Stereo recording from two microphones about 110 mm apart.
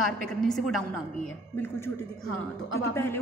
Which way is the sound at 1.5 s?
20° left (ahead or behind).